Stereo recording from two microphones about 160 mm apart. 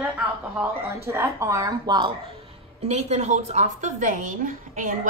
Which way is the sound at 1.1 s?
20° right (ahead or behind).